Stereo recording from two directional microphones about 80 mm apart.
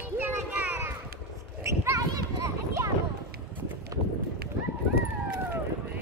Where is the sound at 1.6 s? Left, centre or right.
Right.